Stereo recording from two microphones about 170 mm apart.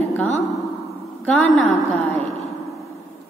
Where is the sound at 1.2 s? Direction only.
5° left (ahead or behind).